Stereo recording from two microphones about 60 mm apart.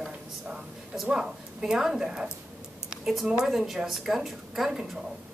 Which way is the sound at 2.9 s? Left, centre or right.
Centre.